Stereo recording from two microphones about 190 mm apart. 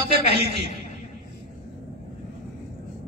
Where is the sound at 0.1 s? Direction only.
60° right (ahead or behind).